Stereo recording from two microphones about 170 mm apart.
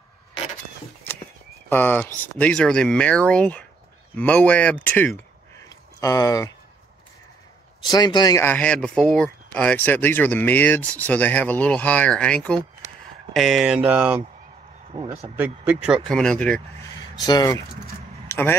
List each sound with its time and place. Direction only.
1.7 s speech: 10° left (ahead or behind)
5.6 s a sound: 20° left (ahead or behind)
7.8 s speech: 25° left (ahead or behind)
8.5 s speech: 5° left (ahead or behind); by 14.2 s 10° right (ahead or behind)
14.9 s speech: 30° right (ahead or behind)
15.3 s speech: 10° right (ahead or behind)
16.0 s speech: 5° left (ahead or behind)
17.2 s speech: 25° left (ahead or behind)
18.3 s speech: 15° left (ahead or behind)